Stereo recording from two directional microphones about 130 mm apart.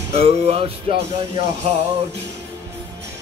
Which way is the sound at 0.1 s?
50° right (ahead or behind).